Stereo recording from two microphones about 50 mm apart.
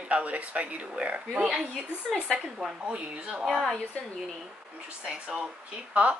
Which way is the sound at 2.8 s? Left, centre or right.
Right.